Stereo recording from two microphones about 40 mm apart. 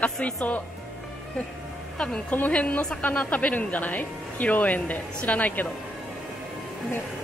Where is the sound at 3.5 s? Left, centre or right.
Left.